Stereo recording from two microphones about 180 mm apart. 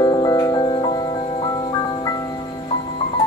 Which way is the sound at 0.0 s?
20° left (ahead or behind).